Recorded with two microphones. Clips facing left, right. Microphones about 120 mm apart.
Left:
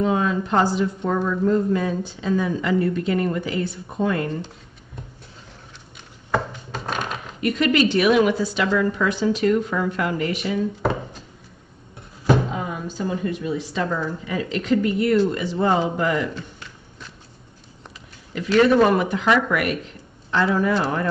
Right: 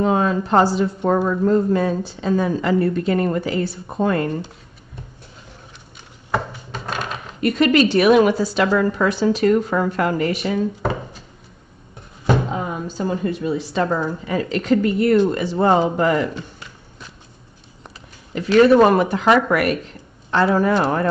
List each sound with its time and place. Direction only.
0.0 s speech: 45° right (ahead or behind)
7.3 s speech: 40° right (ahead or behind)
12.5 s a sound: 40° right (ahead or behind)
13.0 s speech: 45° right (ahead or behind)
18.3 s speech: 40° right (ahead or behind)